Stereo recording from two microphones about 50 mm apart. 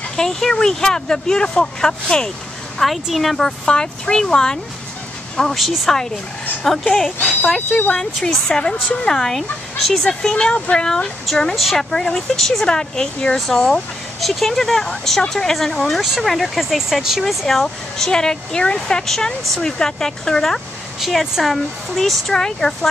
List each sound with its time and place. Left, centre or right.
0.1 s speech: centre
2.8 s speech: centre
11.5 s speech: centre
11.9 s speech: centre
14.2 s speech: centre
21.0 s speech: centre